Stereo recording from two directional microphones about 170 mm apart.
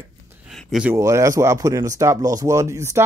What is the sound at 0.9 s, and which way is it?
Speech, 15° right (ahead or behind).